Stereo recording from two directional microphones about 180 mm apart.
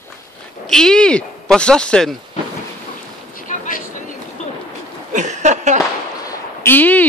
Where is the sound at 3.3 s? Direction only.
50° left (ahead or behind).